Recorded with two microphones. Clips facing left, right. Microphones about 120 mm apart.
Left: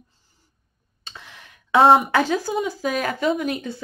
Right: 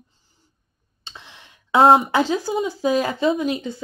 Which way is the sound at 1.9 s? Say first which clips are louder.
Even; 25° right (ahead or behind).